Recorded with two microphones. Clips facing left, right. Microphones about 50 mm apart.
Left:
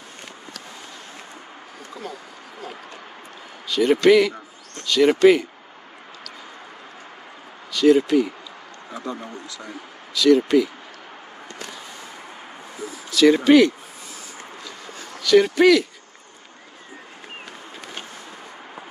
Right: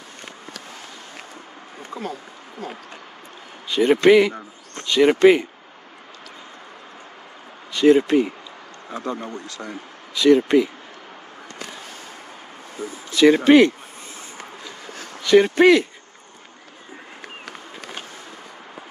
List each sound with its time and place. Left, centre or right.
3.6 s speech: right
7.7 s speech: right
8.9 s a man's voice: right
10.1 s speech: right
13.1 s speech: right
15.1 s speech: right